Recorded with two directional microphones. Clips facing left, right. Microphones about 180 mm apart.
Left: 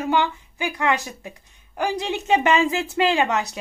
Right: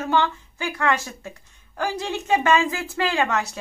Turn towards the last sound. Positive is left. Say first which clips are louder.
# left 2 dB
turn(degrees=20)  # may be behind; listen again after turning